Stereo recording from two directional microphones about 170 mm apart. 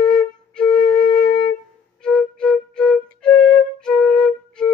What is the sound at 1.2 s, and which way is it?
Wind instrument, 25° left (ahead or behind).